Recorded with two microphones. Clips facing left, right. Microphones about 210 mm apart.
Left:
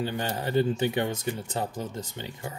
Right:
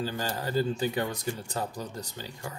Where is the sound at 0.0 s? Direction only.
20° left (ahead or behind).